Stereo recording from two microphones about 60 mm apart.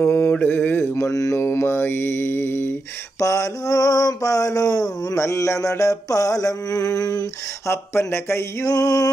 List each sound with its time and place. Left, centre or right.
0.0 s mantra: left
0.3 s mantra: left
3.2 s mantra: left
5.2 s mantra: left
7.6 s speech: left
8.6 s mantra: left